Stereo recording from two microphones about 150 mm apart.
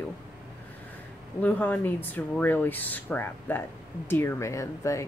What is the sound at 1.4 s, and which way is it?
Speech, 10° left (ahead or behind).